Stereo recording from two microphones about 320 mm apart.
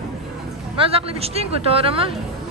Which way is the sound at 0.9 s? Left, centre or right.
Centre.